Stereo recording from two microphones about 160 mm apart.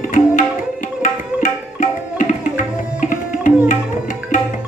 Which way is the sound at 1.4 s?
55° left (ahead or behind).